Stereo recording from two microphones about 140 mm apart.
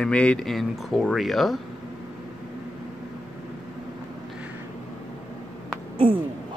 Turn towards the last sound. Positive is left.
turn(degrees=-40)  # may be behind; listen again after turning